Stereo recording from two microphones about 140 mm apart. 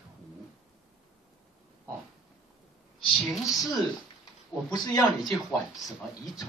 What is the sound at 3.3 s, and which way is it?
Speech, centre (ahead or behind).